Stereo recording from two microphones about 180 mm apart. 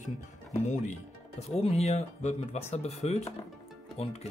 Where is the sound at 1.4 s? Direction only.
35° left (ahead or behind).